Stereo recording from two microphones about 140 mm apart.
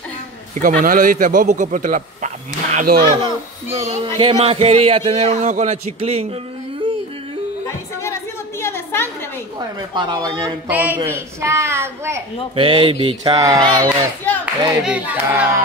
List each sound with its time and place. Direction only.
0.6 s a man's voice: 75° right (ahead or behind)
3.7 s a man's voice: 45° right (ahead or behind)
8.0 s chatter: 20° left (ahead or behind)
9.6 s a sound: 30° right (ahead or behind)
10.7 s a child's voice: 10° right (ahead or behind)
12.5 s a sound: 40° right (ahead or behind)
14.4 s speech: 10° right (ahead or behind)